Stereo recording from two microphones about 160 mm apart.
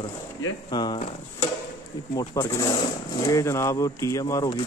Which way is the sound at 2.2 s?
20° left (ahead or behind).